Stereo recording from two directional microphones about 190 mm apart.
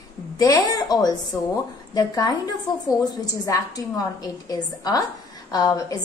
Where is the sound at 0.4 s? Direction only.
20° left (ahead or behind).